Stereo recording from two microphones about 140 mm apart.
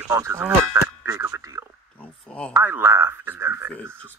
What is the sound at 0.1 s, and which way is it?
Speech, 20° right (ahead or behind).